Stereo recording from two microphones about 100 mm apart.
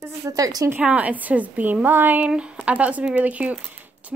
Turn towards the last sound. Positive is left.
turn(degrees=-15)  # may be behind; listen again after turning